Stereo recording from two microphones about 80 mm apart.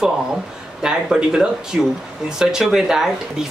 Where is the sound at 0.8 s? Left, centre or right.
Centre.